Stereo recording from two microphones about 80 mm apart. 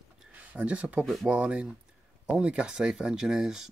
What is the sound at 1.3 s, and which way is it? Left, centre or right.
Speech, centre.